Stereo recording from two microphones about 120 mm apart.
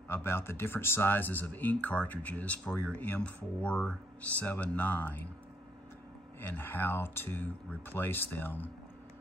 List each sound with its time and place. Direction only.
0.1 s speech: 20° left (ahead or behind)
6.5 s speech: 15° left (ahead or behind)